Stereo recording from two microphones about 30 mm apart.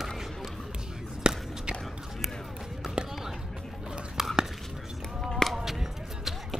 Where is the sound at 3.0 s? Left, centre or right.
Right.